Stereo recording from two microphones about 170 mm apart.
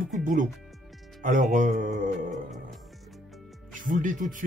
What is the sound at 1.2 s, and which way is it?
Speech, 50° right (ahead or behind).